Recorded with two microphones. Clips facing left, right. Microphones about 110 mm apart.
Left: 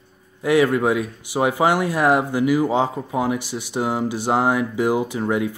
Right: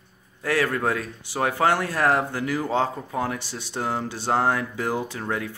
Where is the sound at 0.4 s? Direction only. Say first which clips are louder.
Left 7 dB; 15° left (ahead or behind).